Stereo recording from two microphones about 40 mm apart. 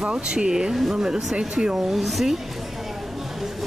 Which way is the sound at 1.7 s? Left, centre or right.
Centre.